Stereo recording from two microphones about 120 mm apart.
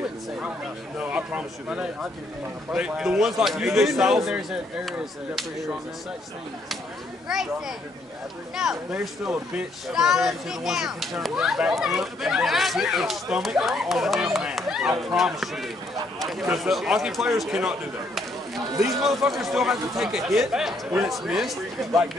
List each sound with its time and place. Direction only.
0.9 s a man's voice: 10° right (ahead or behind)
7.2 s speech: 5° right (ahead or behind)
18.7 s speech: 25° right (ahead or behind)
19.0 s speech: centre (ahead or behind)